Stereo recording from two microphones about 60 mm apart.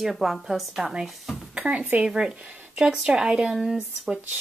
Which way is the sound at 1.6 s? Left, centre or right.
Centre.